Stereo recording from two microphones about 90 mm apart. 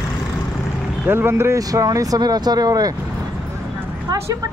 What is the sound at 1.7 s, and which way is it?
Speech, 40° right (ahead or behind).